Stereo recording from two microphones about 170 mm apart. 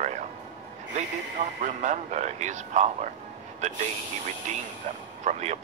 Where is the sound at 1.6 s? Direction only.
45° right (ahead or behind).